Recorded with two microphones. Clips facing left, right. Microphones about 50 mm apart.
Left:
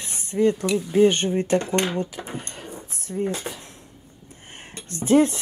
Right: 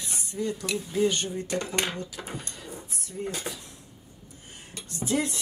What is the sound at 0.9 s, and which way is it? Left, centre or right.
Speech, left.